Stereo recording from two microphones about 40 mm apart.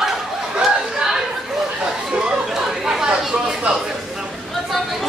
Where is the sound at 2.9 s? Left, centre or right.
Centre.